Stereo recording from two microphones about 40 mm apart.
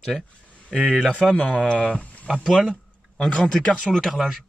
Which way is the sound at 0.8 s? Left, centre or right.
Centre.